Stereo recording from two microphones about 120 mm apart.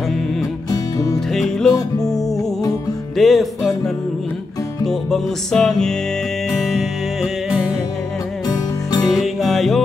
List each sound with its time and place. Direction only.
1.3 s music: 5° left (ahead or behind)
3.2 s music: centre (ahead or behind)
4.8 s music: 5° left (ahead or behind)
9.0 s music: centre (ahead or behind)